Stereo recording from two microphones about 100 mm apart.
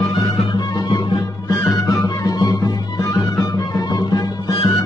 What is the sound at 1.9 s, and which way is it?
Music, 40° left (ahead or behind).